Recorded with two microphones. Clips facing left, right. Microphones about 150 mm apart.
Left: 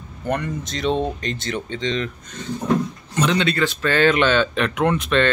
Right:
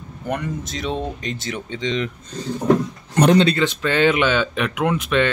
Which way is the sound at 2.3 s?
35° right (ahead or behind).